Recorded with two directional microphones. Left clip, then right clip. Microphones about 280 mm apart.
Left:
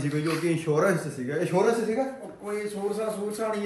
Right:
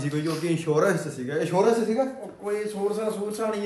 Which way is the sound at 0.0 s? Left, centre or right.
Centre.